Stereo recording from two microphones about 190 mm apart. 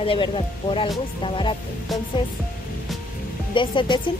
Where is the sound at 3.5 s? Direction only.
25° left (ahead or behind).